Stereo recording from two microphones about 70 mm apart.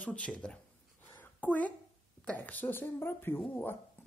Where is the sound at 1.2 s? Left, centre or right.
Left.